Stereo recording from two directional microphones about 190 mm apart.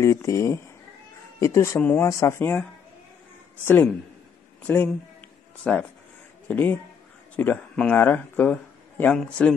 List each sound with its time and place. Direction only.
0.0 s speech: 15° left (ahead or behind)
3.6 s speech: 10° left (ahead or behind)